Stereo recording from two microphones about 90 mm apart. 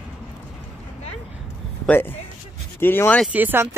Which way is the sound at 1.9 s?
25° left (ahead or behind).